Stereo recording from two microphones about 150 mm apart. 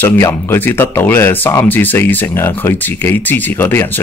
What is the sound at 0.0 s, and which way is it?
Speech, 15° left (ahead or behind).